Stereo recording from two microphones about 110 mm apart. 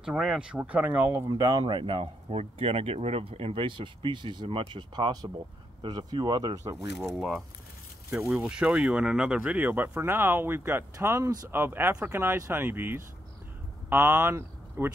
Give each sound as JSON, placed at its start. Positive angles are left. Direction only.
{"t": 0.0, "sound": "speech", "side_deg": -5}
{"t": 1.3, "sound": "speech", "side_deg": -35}
{"t": 1.6, "sound": "speech", "side_deg": -50}
{"t": 2.2, "sound": "speech", "side_deg": -65}
{"t": 6.8, "sound": "speech", "side_deg": -5}